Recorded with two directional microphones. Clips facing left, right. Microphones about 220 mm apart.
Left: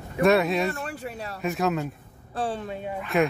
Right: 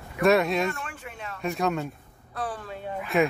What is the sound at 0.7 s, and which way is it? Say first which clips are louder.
Speech: left 4 dB; 35° left (ahead or behind).